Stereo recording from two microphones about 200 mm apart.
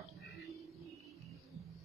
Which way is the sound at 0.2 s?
Centre (ahead or behind).